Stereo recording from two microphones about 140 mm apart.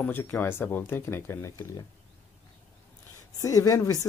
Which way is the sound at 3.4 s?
25° left (ahead or behind).